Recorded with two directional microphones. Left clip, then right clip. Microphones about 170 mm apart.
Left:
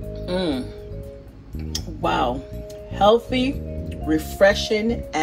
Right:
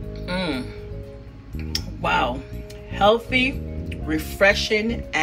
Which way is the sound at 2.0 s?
20° right (ahead or behind).